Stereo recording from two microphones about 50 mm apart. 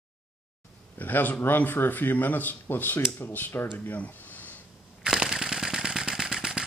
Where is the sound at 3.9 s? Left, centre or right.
Left.